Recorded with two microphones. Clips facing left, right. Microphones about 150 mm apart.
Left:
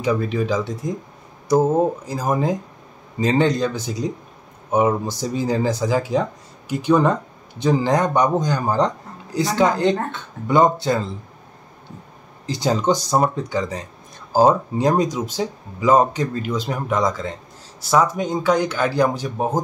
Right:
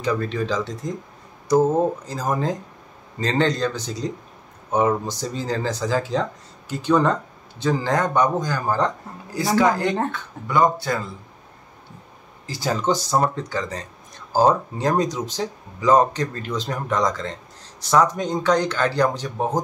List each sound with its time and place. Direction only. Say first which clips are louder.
0.0 s a man's voice: left 3 dB; 10° left (ahead or behind)
12.4 s speech: left 3 dB; 20° left (ahead or behind)